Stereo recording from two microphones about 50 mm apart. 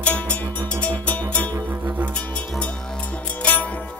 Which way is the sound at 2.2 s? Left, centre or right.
Left.